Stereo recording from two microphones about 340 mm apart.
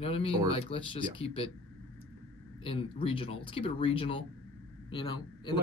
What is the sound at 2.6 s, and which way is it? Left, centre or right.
Speech, centre.